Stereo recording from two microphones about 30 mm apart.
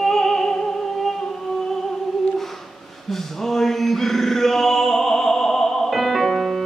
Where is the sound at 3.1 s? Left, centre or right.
Centre.